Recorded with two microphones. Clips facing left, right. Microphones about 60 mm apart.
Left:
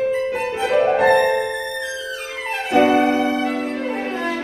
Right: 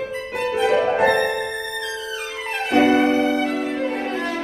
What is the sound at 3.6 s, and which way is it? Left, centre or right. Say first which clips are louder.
Music: even; centre.